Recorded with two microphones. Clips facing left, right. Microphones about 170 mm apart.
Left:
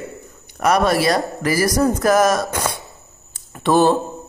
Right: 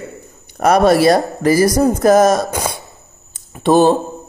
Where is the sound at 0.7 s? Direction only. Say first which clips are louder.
Right 6 dB; 30° right (ahead or behind).